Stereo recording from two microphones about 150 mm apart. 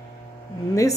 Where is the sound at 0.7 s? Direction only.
20° left (ahead or behind).